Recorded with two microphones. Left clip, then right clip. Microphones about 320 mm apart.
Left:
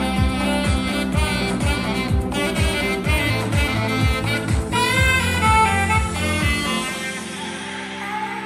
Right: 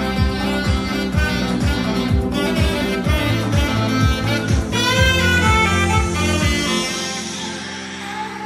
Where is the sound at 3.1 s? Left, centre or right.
Left.